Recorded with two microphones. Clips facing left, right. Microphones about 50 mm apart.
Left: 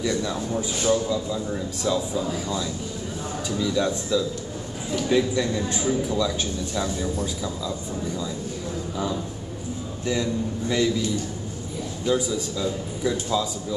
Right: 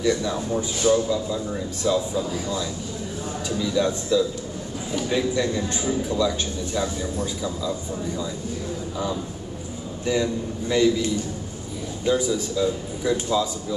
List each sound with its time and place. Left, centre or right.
0.0 s a man's voice: centre
3.4 s a man's voice: centre
10.0 s a man's voice: centre
12.1 s a man's voice: centre